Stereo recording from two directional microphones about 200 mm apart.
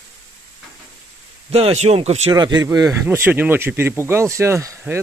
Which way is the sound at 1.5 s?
30° right (ahead or behind).